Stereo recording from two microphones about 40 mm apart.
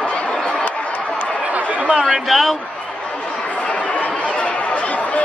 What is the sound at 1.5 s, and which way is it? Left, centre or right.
Chatter, right.